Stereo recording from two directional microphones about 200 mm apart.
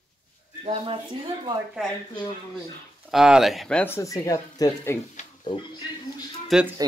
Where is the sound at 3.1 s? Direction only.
5° right (ahead or behind); by 5.0 s 15° left (ahead or behind).